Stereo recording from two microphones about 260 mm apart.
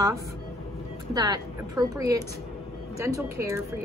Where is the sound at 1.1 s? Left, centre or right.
Centre.